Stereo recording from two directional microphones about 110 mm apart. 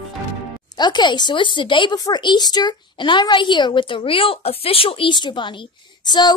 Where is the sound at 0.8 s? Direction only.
40° left (ahead or behind).